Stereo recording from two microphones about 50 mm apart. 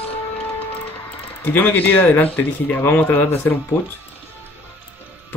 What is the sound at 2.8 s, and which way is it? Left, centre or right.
Speech, left.